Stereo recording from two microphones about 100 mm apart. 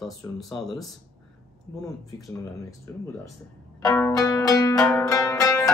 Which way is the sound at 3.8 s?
30° left (ahead or behind).